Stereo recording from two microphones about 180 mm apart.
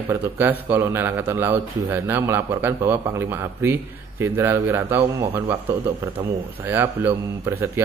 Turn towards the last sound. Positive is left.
turn(degrees=-10)  # may be behind; listen again after turning